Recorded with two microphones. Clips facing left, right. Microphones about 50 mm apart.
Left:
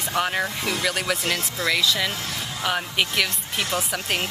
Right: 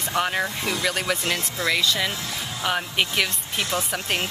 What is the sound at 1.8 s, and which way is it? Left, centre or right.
Speech, centre.